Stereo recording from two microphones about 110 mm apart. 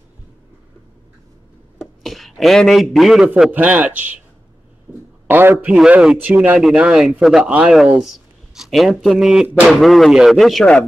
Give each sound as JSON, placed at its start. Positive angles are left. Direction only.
{"t": 1.8, "sound": "a man's voice", "side_deg": 0}
{"t": 3.5, "sound": "speech", "side_deg": -15}
{"t": 4.9, "sound": "a sound", "side_deg": -15}
{"t": 5.3, "sound": "speech", "side_deg": -20}